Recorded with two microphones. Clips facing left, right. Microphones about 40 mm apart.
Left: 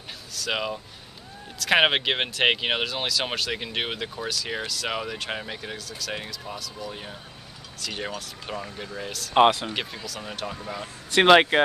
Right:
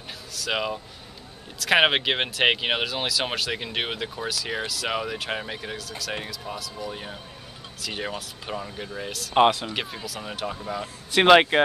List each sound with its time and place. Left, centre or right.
0.3 s speech: centre